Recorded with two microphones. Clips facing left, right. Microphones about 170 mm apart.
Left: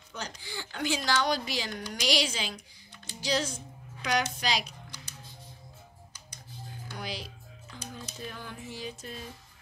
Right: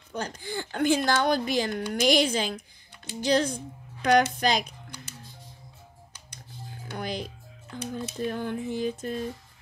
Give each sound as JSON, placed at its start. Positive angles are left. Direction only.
{"t": 0.1, "sound": "speech", "side_deg": -50}
{"t": 6.9, "sound": "speech", "side_deg": -50}